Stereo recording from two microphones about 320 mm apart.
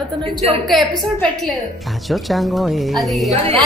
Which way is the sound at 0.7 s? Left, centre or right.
Centre.